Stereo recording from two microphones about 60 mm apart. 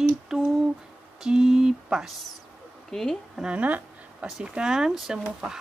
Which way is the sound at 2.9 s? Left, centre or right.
Centre.